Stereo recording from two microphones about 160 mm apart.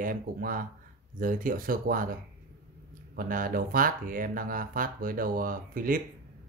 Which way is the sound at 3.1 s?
60° right (ahead or behind).